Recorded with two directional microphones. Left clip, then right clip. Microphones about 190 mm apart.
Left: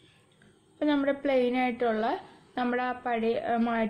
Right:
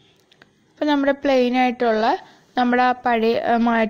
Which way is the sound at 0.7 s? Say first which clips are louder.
Right 8 dB; 45° right (ahead or behind).